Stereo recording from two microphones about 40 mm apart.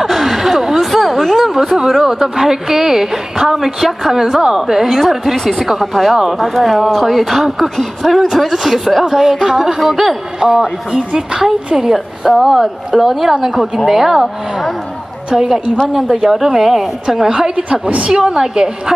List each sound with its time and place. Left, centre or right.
0.0 s a woman's voice: centre
15.3 s a woman's voice: centre
17.6 s a woman's voice: right